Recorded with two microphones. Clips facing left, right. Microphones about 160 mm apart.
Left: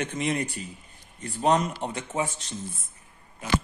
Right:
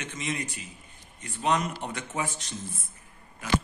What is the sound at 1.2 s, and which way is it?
Speech, 35° left (ahead or behind).